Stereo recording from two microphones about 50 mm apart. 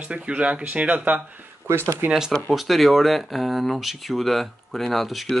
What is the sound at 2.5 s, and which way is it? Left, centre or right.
Speech, centre.